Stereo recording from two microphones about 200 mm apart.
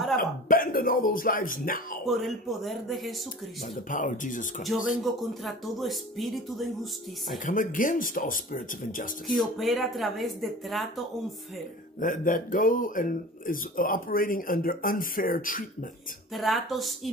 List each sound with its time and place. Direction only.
0.2 s speech: 45° left (ahead or behind)
2.0 s speech: centre (ahead or behind)
3.9 s speech: 40° left (ahead or behind)
5.0 s speech: centre (ahead or behind)
7.4 s speech: 40° left (ahead or behind)
9.3 s speech: centre (ahead or behind)
12.0 s speech: 40° left (ahead or behind)
16.3 s speech: centre (ahead or behind)